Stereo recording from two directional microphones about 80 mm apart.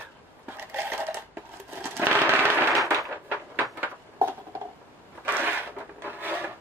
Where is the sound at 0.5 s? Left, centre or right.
Right.